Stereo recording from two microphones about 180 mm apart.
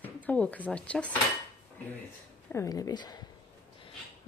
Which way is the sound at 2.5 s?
20° left (ahead or behind).